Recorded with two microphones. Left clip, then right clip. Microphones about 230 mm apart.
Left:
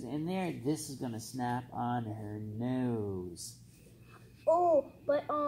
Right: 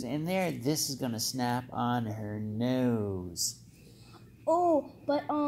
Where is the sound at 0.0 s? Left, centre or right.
Right.